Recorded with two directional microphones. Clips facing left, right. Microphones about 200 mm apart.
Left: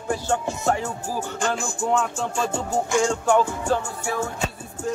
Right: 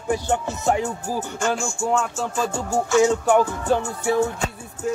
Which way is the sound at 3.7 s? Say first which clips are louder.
Right 4 dB; 20° right (ahead or behind).